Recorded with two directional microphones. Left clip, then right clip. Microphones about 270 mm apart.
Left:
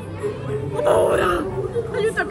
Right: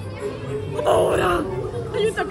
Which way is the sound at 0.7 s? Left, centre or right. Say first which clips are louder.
Left 1 dB; centre.